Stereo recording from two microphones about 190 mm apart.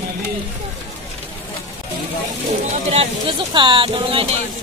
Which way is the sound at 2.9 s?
30° right (ahead or behind).